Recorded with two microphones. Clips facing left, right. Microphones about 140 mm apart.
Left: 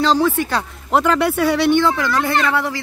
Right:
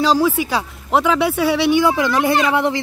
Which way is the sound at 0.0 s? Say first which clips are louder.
Even; 5° right (ahead or behind).